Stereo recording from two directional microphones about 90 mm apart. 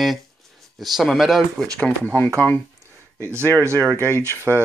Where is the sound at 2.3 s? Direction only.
15° left (ahead or behind).